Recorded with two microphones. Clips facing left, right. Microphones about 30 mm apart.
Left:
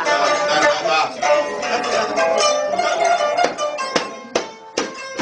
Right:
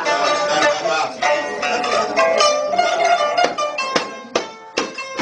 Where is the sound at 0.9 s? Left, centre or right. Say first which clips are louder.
Left 2 dB; left.